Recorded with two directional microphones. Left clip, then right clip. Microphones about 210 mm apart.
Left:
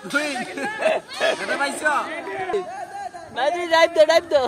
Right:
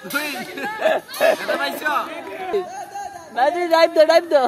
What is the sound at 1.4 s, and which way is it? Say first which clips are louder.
Chatter: even; 50° left (ahead or behind).